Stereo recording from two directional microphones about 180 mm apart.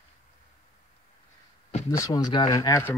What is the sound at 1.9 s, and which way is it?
Speech, 20° left (ahead or behind).